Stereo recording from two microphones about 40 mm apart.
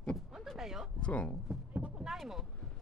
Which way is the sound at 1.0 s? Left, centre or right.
Left.